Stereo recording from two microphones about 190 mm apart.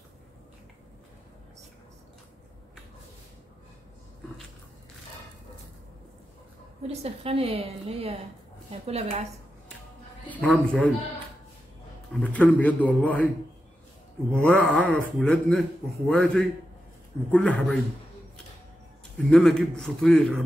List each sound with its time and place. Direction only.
6.9 s a woman's voice: 35° right (ahead or behind)
10.2 s a man's voice: 10° left (ahead or behind)
12.2 s speech: 10° left (ahead or behind)
14.4 s a man's voice: 10° left (ahead or behind)
19.3 s a man's voice: centre (ahead or behind)